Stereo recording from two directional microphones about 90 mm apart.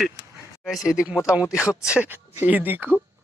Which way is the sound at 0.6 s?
5° right (ahead or behind).